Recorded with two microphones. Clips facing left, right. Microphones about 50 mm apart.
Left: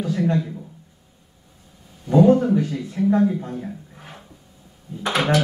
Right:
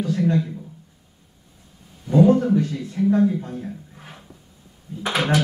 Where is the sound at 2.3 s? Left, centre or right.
Centre.